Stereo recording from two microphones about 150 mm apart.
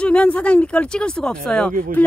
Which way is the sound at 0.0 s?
10° left (ahead or behind).